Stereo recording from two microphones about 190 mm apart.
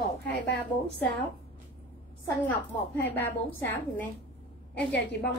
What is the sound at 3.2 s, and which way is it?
Speech, 10° left (ahead or behind).